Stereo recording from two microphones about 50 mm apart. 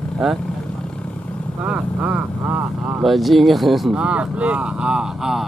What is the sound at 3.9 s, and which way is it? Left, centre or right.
Speech, right.